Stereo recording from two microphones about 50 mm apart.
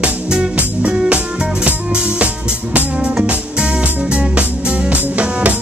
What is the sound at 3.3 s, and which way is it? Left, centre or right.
Music, centre.